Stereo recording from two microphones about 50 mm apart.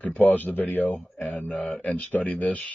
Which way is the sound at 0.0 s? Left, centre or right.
Left.